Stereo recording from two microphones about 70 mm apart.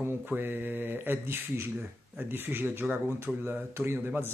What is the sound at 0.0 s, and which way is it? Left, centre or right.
Speech, right.